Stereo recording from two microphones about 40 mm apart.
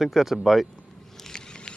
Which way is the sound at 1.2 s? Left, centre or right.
Centre.